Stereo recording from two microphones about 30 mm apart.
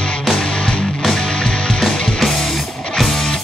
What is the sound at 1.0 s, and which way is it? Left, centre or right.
Music, centre.